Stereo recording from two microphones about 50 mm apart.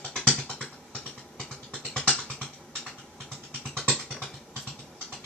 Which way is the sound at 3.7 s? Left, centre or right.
Centre.